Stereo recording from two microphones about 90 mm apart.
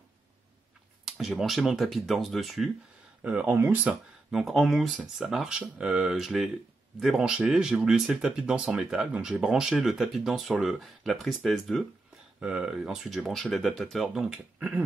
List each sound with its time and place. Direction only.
1.0 s speech: 5° right (ahead or behind)
3.3 s speech: 15° right (ahead or behind)
4.3 s speech: centre (ahead or behind)
12.4 s speech: 10° right (ahead or behind)